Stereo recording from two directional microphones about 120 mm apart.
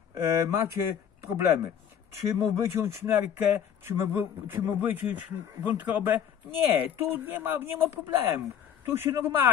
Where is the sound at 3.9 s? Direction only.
15° right (ahead or behind).